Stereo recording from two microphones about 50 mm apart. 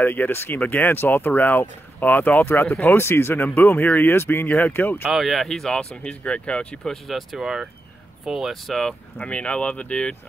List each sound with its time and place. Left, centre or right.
0.0 s speech: left
3.4 s speech: left
5.1 s speech: centre
6.2 s speech: left
7.1 s speech: centre
7.4 s speech: centre
9.2 s speech: left